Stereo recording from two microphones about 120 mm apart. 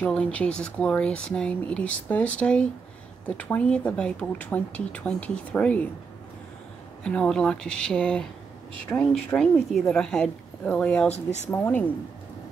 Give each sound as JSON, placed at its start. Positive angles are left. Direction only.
{"t": 0.0, "sound": "speech", "side_deg": 10}
{"t": 7.0, "sound": "speech", "side_deg": 5}
{"t": 11.1, "sound": "speech", "side_deg": 70}
{"t": 11.5, "sound": "speech", "side_deg": 15}